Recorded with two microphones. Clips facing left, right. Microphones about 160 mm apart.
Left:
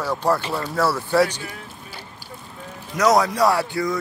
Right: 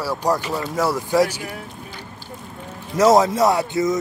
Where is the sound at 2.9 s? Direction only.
25° right (ahead or behind).